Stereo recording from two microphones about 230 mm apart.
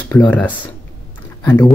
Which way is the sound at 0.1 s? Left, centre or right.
Centre.